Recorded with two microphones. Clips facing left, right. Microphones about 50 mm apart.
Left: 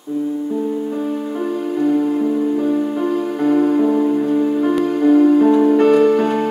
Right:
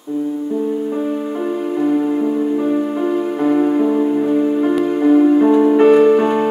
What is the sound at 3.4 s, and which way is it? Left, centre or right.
Music, centre.